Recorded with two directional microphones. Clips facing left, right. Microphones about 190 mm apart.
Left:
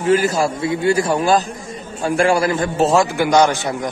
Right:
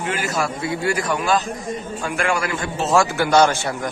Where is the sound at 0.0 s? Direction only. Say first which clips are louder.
Left 8 dB; 35° left (ahead or behind).